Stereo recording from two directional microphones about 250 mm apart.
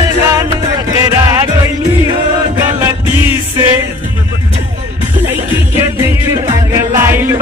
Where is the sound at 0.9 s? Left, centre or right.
Centre.